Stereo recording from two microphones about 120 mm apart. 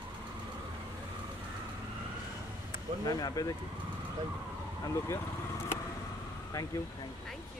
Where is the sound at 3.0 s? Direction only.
30° left (ahead or behind).